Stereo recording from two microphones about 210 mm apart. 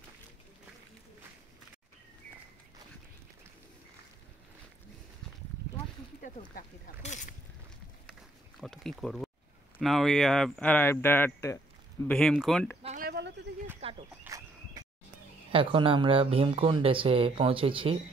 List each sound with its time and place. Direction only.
6.2 s speech: 35° left (ahead or behind)
8.1 s a sound: centre (ahead or behind)
9.8 s speech: centre (ahead or behind)
12.8 s a sound: 35° right (ahead or behind)
14.2 s fowl: 15° right (ahead or behind)
15.5 s speech: 25° right (ahead or behind)